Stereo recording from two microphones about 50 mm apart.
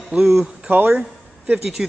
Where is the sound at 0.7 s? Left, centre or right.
Right.